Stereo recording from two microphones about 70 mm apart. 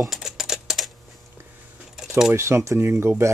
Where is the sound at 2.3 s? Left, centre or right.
Right.